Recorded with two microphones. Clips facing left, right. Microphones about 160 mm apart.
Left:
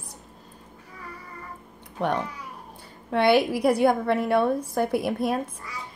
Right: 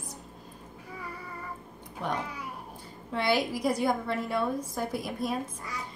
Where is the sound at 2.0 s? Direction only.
65° left (ahead or behind).